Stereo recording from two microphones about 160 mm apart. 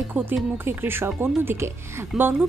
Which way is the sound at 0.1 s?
10° right (ahead or behind).